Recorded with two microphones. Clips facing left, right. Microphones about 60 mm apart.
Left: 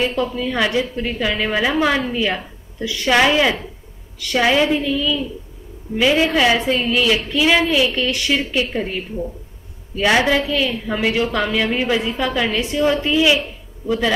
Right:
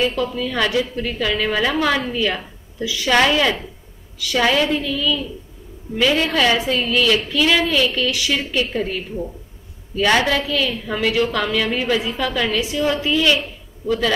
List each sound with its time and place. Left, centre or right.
0.0 s a woman's voice: centre
8.1 s speech: centre
8.5 s a woman's voice: centre
12.0 s speech: centre
12.3 s a woman's voice: centre
13.8 s a man's voice: left